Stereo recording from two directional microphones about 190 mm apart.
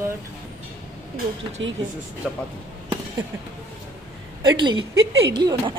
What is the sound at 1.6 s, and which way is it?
Speech, 80° right.